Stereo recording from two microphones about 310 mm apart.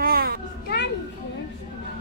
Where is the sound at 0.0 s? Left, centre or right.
Right.